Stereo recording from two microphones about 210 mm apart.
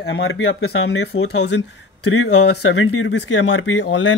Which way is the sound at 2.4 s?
55° left (ahead or behind).